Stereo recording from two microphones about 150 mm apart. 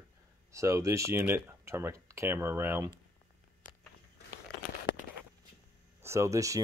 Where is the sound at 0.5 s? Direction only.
20° right (ahead or behind).